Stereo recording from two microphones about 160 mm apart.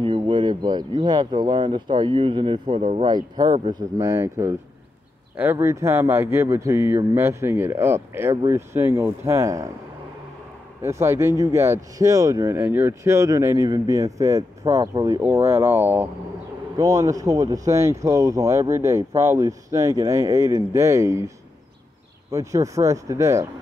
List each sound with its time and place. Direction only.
0.0 s speech: 30° right (ahead or behind)
3.1 s speech: 25° right (ahead or behind)
10.8 s speech: 15° right (ahead or behind)
22.3 s speech: 20° right (ahead or behind)